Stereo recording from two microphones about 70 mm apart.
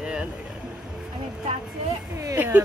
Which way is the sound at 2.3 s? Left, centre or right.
Right.